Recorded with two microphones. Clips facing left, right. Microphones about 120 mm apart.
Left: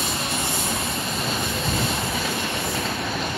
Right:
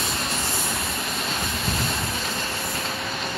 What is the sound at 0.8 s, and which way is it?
Train, centre (ahead or behind).